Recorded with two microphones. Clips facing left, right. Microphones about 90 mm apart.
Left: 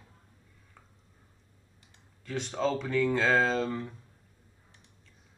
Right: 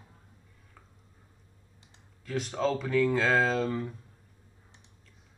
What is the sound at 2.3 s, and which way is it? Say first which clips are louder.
Speech: right 1 dB; centre (ahead or behind).